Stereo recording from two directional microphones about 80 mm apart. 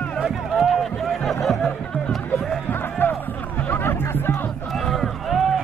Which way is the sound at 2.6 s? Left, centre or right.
Left.